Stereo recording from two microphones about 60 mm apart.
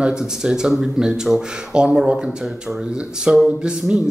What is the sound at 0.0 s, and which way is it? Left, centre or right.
Speech, centre.